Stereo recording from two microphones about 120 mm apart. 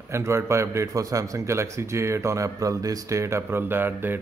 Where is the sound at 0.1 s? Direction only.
20° right (ahead or behind).